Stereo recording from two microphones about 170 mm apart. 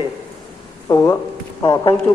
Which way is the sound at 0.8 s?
15° left (ahead or behind).